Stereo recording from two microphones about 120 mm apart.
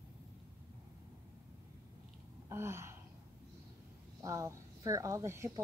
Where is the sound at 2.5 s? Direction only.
20° right (ahead or behind).